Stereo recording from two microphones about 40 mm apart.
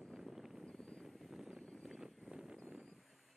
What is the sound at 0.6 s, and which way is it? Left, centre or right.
Vehicle, left.